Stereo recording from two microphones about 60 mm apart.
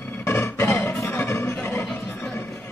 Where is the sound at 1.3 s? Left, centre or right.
Left.